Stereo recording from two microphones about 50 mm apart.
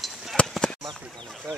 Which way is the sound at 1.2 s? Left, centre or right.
Centre.